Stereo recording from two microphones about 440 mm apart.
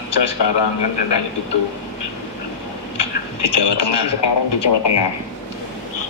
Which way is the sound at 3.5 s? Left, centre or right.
Left.